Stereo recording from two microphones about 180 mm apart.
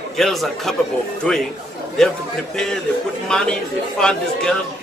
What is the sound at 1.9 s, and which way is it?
A man's voice, 5° left (ahead or behind).